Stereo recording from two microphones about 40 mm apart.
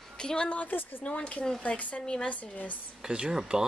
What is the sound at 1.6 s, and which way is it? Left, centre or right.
Speech, left.